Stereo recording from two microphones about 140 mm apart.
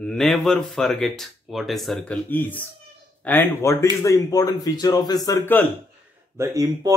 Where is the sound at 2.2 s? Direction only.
15° left (ahead or behind).